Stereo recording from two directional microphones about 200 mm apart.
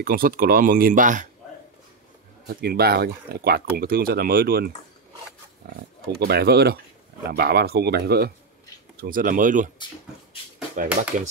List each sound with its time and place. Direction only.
0.0 s speech: 45° right (ahead or behind)
2.4 s speech: 50° right (ahead or behind)
10.8 s speech: 40° right (ahead or behind)